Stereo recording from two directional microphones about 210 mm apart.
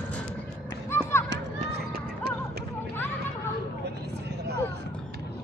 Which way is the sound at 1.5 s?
45° right (ahead or behind).